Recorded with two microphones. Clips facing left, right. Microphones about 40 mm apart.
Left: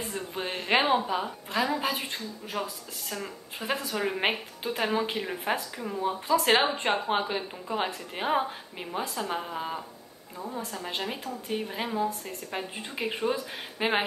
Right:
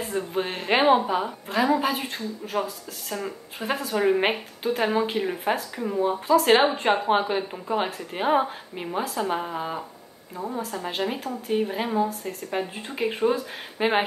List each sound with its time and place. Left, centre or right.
0.1 s a woman's voice: centre